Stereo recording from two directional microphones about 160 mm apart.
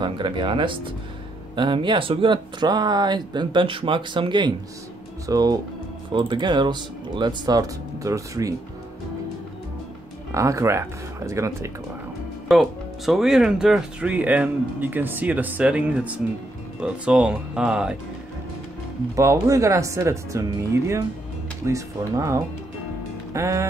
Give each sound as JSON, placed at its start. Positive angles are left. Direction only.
{"t": 0.0, "sound": "speech", "side_deg": -30}
{"t": 10.3, "sound": "speech", "side_deg": -20}
{"t": 12.4, "sound": "speech", "side_deg": 0}
{"t": 19.1, "sound": "speech", "side_deg": -20}